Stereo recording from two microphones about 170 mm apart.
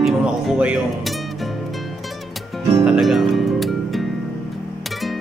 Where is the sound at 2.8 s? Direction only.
5° right (ahead or behind).